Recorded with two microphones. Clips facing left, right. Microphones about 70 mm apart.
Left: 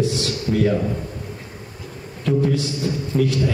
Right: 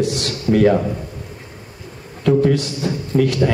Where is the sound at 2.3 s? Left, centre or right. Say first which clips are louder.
Right 5 dB; right.